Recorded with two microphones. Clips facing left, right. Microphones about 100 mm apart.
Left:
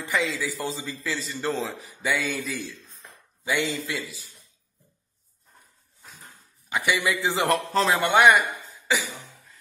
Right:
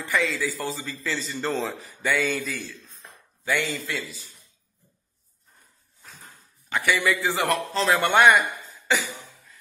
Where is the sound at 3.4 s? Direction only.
15° left (ahead or behind).